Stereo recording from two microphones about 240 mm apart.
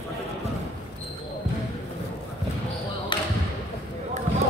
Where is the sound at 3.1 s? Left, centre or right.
Centre.